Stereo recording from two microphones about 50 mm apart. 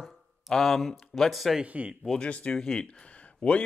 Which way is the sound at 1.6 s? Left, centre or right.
Right.